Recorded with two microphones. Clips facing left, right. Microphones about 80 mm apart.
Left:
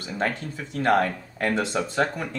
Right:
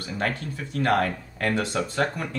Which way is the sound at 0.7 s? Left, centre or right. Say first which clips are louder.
Left 2 dB; left.